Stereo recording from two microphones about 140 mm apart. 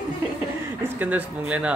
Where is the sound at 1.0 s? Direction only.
10° right (ahead or behind).